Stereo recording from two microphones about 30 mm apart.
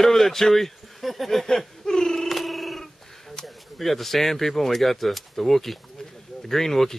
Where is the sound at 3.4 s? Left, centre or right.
Centre.